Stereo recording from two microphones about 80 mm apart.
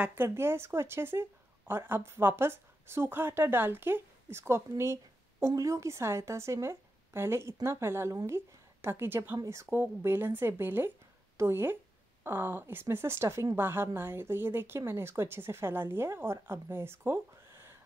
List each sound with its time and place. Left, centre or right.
0.1 s speech: right